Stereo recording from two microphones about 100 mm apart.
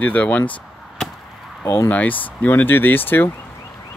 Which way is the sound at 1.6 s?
30° left (ahead or behind).